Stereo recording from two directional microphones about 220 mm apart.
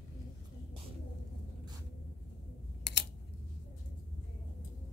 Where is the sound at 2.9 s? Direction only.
50° left (ahead or behind).